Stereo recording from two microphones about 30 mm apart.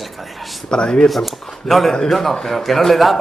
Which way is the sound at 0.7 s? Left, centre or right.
Left.